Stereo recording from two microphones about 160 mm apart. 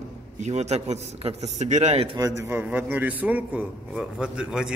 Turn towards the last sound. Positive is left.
turn(degrees=-5)  # may be behind; listen again after turning